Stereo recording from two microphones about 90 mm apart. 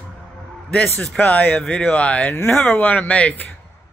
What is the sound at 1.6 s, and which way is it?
Speech, 5° left (ahead or behind).